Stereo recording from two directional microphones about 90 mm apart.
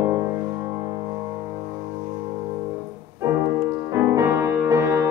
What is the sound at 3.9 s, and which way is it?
Music, 30° right (ahead or behind).